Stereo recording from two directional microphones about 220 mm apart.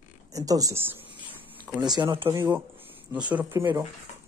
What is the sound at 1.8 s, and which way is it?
Speech, 20° right (ahead or behind).